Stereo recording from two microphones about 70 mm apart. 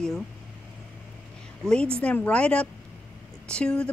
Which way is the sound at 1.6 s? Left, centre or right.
Centre.